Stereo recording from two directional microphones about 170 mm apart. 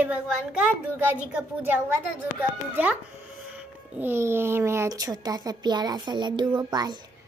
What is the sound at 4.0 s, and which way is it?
A woman's voice, 15° right (ahead or behind).